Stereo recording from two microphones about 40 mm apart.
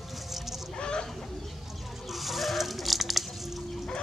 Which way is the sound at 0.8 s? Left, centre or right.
Left.